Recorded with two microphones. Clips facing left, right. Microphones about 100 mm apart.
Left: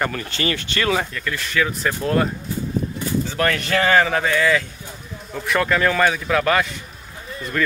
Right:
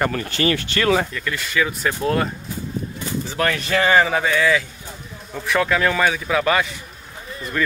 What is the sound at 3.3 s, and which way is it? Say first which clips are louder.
Speech: right 2 dB; 15° right (ahead or behind).